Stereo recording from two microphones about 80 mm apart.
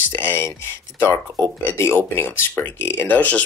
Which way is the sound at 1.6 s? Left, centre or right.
Left.